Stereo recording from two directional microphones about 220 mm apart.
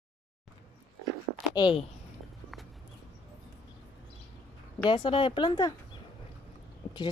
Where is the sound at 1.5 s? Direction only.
20° left (ahead or behind).